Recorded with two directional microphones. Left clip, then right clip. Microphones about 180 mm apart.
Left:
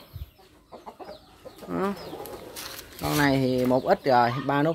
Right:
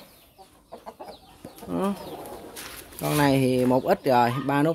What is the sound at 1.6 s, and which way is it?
Speech, 15° right (ahead or behind).